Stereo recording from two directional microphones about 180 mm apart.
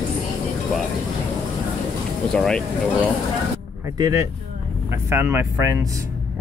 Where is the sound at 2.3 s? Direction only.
5° left (ahead or behind).